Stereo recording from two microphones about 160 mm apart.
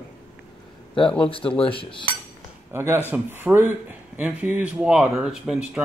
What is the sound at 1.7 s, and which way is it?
Cutlery, 35° left (ahead or behind).